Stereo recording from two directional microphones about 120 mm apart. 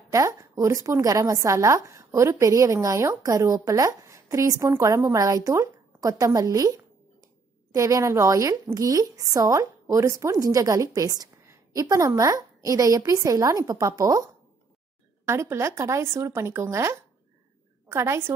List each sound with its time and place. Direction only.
0.1 s a woman's voice: 25° right (ahead or behind)